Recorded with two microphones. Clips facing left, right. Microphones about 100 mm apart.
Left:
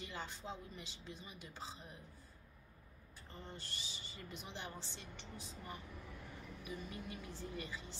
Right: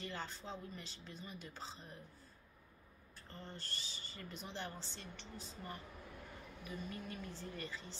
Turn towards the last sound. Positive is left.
turn(degrees=15)  # may be behind; listen again after turning